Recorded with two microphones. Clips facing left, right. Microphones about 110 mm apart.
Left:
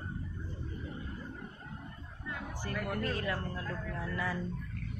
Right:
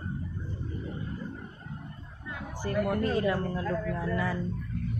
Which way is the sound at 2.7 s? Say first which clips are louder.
Right 8 dB; 20° right (ahead or behind).